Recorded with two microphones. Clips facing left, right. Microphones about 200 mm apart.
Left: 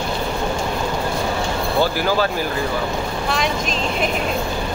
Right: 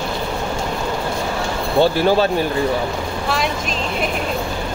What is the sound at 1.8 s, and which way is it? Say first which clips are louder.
Speech: right 5 dB; 25° right (ahead or behind).